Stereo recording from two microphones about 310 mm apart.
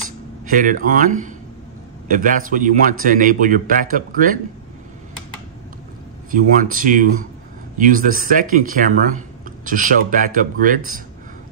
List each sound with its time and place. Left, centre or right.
0.5 s a man's voice: right
6.3 s a man's voice: right